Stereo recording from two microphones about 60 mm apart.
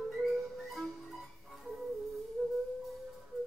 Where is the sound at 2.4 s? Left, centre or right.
Centre.